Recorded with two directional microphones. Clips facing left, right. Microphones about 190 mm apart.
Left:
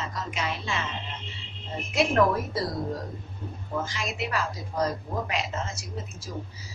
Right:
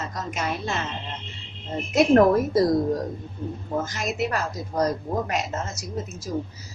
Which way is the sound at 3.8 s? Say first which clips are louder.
Right 5 dB; 45° right (ahead or behind).